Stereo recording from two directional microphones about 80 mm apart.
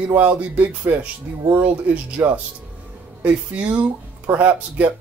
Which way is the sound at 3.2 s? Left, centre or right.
Centre.